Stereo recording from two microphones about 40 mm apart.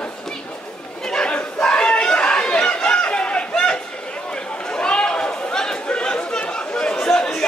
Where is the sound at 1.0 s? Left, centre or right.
Left.